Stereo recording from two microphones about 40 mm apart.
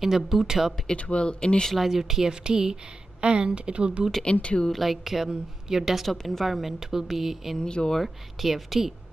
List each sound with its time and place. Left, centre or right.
0.0 s speech: centre
0.9 s a man's voice: left
1.8 s speech: centre
2.4 s a woman's voice: centre
4.2 s a man's voice: left
4.7 s a woman's voice: centre
6.0 s a woman's voice: centre
7.5 s a man's voice: centre
8.0 s a woman's voice: centre